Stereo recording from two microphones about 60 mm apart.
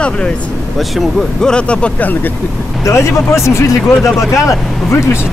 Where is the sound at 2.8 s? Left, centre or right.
Left.